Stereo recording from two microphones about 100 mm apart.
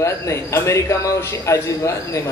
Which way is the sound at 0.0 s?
30° left (ahead or behind).